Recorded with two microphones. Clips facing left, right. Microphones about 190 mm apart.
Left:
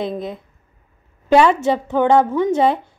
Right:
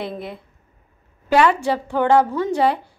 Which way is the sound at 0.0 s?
20° left (ahead or behind).